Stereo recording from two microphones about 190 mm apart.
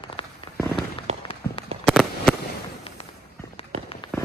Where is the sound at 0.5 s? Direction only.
10° left (ahead or behind).